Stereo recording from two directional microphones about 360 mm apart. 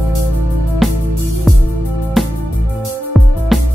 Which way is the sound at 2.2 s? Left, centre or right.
Centre.